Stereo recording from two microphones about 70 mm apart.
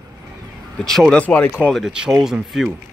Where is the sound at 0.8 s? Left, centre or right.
Centre.